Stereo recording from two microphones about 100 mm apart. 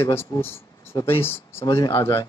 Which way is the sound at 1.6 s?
40° left (ahead or behind).